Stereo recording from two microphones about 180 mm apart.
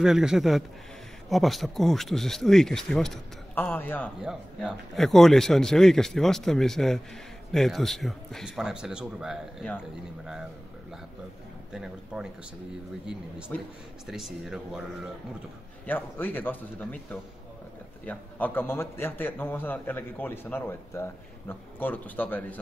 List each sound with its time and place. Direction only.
0.0 s speech: 5° right (ahead or behind)
4.2 s speech: 5° right (ahead or behind)
11.7 s speech: 5° right (ahead or behind)
14.0 s speech: centre (ahead or behind)
15.9 s a man's voice: 10° left (ahead or behind)